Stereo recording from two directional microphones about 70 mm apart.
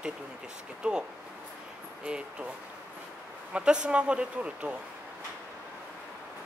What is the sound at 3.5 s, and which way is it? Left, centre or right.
Speech, centre.